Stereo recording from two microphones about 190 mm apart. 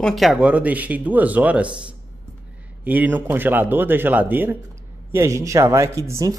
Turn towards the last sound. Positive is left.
turn(degrees=-15)  # may be behind; listen again after turning